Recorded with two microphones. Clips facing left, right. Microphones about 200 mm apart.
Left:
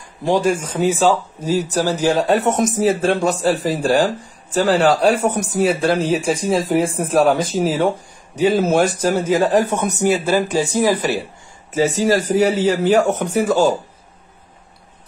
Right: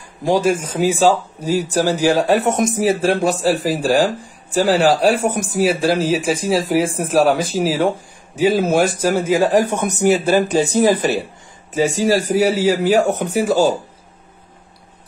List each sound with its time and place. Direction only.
0.2 s speech: 10° right (ahead or behind)